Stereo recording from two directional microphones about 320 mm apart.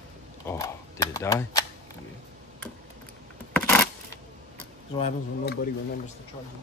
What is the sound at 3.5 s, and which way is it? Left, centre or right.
Coin, centre.